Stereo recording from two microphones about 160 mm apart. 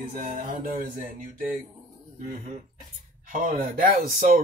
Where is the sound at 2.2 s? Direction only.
55° right (ahead or behind).